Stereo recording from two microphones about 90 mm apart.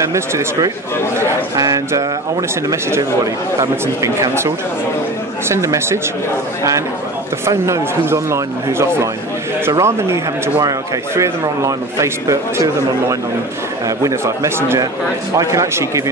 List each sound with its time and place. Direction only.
0.0 s speech: 30° right (ahead or behind)
7.4 s speech: 30° right (ahead or behind)